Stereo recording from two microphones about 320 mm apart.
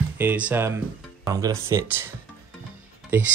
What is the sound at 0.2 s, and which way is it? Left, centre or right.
Speech, centre.